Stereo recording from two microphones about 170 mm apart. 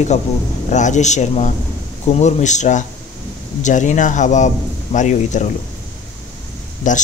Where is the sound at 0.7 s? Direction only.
45° left (ahead or behind).